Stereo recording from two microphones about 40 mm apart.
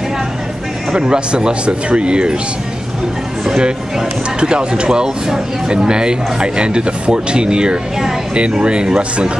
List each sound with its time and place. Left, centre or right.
0.9 s speech: right
3.4 s music: centre
4.4 s speech: right